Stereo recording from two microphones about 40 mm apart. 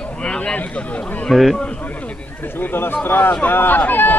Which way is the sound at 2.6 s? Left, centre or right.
Left.